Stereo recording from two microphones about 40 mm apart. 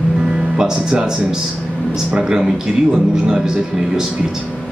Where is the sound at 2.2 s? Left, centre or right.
Centre.